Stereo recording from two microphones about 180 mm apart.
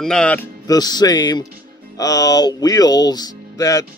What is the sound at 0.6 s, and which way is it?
Speech, 20° left (ahead or behind).